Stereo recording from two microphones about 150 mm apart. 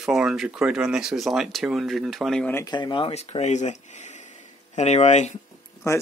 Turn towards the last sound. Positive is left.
turn(degrees=20)  # may be behind; listen again after turning